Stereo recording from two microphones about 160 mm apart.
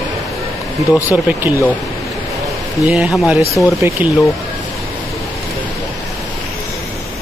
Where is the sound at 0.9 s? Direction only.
10° right (ahead or behind).